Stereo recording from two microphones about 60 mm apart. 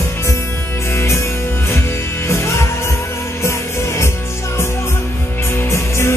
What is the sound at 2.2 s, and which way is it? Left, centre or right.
Music, left.